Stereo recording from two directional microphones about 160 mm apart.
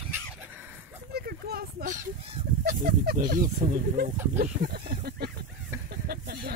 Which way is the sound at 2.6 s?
60° right (ahead or behind).